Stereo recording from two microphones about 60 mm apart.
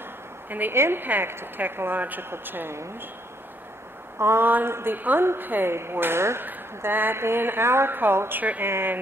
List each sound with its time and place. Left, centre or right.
0.5 s a woman's voice: right
4.2 s a woman's voice: right
6.4 s a woman's voice: right
8.6 s a woman's voice: right